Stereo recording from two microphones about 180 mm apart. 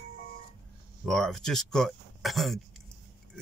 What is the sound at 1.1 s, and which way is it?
Speech, 5° left (ahead or behind).